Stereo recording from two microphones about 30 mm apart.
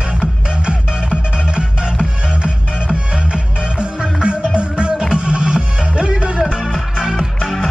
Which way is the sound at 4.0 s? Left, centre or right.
Right.